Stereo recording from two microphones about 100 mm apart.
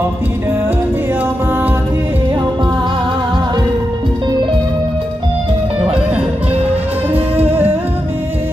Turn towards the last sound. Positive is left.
turn(degrees=-20)  # may be behind; listen again after turning